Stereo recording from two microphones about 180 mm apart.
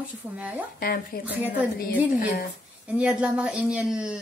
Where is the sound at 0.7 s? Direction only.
55° left (ahead or behind).